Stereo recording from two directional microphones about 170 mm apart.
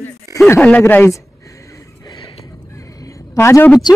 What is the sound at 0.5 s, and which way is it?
Speech, 10° left (ahead or behind).